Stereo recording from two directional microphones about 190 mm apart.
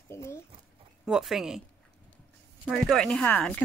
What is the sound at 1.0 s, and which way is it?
Speech, centre (ahead or behind).